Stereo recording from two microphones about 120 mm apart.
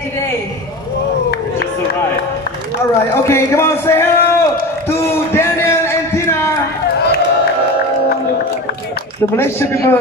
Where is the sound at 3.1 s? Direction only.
25° left (ahead or behind).